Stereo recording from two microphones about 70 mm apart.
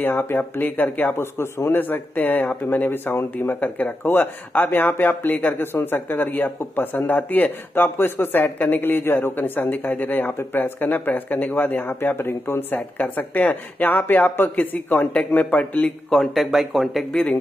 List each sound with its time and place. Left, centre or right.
0.0 s speech: left
16.1 s speech: centre
17.1 s speech: centre